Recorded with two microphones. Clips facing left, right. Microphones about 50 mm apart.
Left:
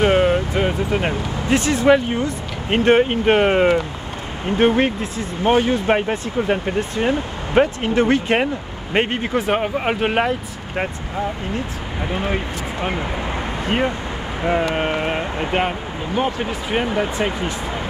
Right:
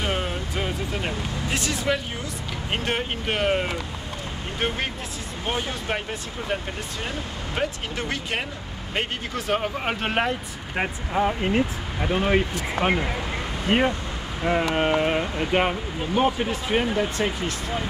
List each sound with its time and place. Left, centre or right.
0.0 s vehicle: left
3.0 s speech: left
3.5 s speech: left
4.6 s speech: left
6.8 s speech: left
9.9 s speech: centre
11.1 s speech: right
12.0 s speech: centre
13.7 s speech: centre
14.4 s speech: centre
16.2 s speech: centre
16.8 s speech: left